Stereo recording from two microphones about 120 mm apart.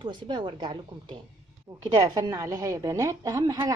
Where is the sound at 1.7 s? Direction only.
30° right (ahead or behind).